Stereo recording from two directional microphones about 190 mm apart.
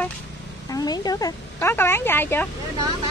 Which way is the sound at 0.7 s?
20° left (ahead or behind).